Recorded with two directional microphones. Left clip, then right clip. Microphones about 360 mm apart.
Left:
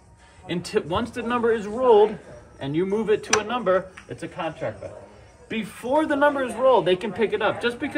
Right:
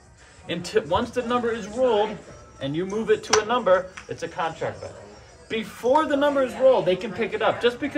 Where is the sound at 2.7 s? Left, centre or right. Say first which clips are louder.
Left 1 dB; centre.